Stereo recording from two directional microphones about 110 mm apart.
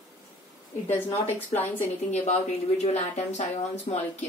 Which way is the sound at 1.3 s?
20° left (ahead or behind).